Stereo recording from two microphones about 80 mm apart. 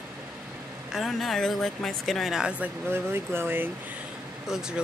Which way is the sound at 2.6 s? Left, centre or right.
Right.